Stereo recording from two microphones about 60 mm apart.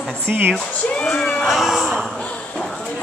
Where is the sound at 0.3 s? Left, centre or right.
Right.